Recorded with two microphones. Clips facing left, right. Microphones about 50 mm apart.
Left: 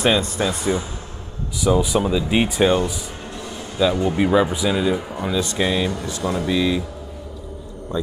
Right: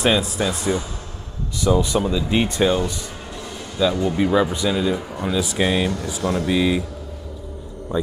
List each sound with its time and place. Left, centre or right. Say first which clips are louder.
0.0 s a man's voice: even; centre
5.3 s speech: right 1 dB; centre
6.5 s speech: right 1 dB; centre
7.9 s speech: right 2 dB; centre